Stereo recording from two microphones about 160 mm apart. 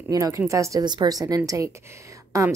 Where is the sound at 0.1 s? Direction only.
20° right (ahead or behind).